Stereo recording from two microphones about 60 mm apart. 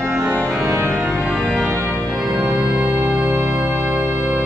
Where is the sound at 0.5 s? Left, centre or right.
Centre.